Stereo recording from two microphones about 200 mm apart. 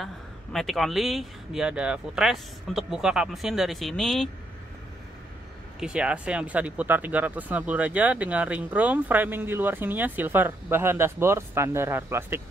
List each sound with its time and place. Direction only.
0.0 s speech: centre (ahead or behind)
5.8 s speech: 5° right (ahead or behind)